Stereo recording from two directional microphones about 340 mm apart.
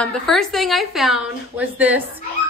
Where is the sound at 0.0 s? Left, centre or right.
Centre.